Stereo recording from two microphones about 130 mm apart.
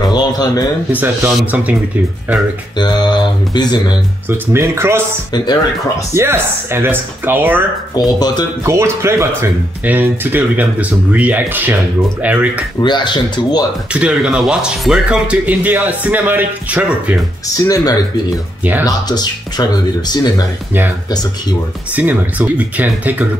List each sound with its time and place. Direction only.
0.1 s a sound: 30° left (ahead or behind)
0.9 s speech: 15° right (ahead or behind)
2.8 s speech: 35° left (ahead or behind)
4.5 s speech: 20° right (ahead or behind)
5.3 s speech: 30° left (ahead or behind)
6.1 s speech: 20° right (ahead or behind)
7.9 s speech: 30° left (ahead or behind)
8.6 s speech: 20° right (ahead or behind)
12.8 s speech: 35° left (ahead or behind)
13.9 s speech: 10° right (ahead or behind)
17.6 s speech: 30° left (ahead or behind)
18.6 s speech: 15° right (ahead or behind)
18.9 s speech: 30° left (ahead or behind)
21.9 s speech: 10° right (ahead or behind)